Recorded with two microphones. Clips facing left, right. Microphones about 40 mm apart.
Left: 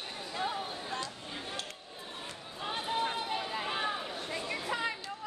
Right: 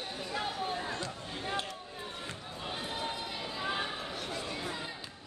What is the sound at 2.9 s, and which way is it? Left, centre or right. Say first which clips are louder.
Run: left 5 dB; left.